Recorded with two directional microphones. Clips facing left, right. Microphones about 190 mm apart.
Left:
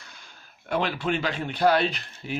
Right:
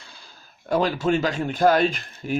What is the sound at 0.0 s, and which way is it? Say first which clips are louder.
Speech: right 2 dB; 30° right (ahead or behind).